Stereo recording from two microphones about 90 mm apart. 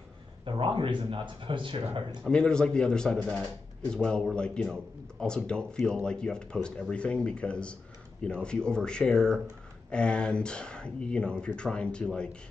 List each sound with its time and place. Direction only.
0.5 s speech: 70° right (ahead or behind)
2.2 s speech: 10° left (ahead or behind)